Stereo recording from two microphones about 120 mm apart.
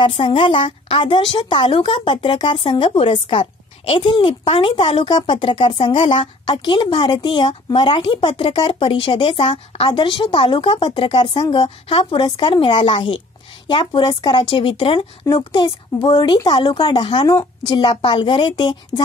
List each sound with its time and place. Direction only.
0.0 s a woman's voice: 45° left (ahead or behind)